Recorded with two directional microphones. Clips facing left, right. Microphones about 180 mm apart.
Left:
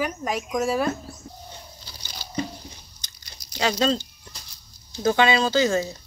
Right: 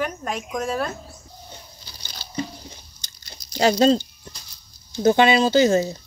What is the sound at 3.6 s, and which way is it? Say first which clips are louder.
Speech: right 6 dB; 35° right (ahead or behind).